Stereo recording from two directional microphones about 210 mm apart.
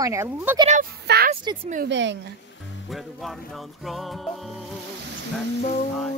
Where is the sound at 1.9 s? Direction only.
60° right (ahead or behind).